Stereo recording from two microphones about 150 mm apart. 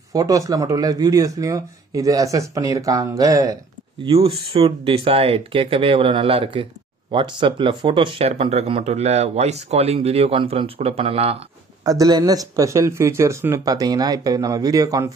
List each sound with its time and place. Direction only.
0.1 s speech: 25° right (ahead or behind)
4.0 s speech: 40° right (ahead or behind)
11.8 s speech: 25° right (ahead or behind)